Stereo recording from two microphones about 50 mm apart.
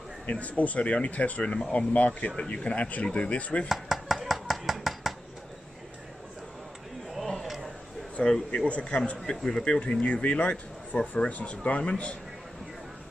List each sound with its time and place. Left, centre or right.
0.3 s speech: left
3.6 s chopping: centre
7.1 s a sound: centre
8.5 s speech: left
10.0 s speech: left